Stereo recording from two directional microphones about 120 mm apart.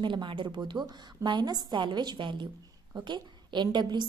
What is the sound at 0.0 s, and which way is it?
A woman's voice, 40° right (ahead or behind).